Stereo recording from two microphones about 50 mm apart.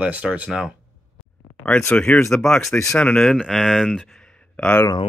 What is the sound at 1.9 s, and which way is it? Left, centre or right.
Speech, left.